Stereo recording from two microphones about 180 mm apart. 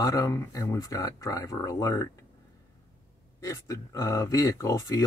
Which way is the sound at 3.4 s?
15° left (ahead or behind).